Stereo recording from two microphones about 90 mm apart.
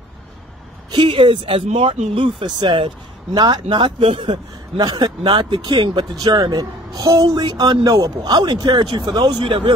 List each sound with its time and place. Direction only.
0.9 s speech: 65° right (ahead or behind)
3.3 s speech: 50° right (ahead or behind)
3.6 s speech: 75° right (ahead or behind)
4.7 s speech: 50° right (ahead or behind)
7.4 s speech: 55° right (ahead or behind)
8.2 s speech: 50° right (ahead or behind)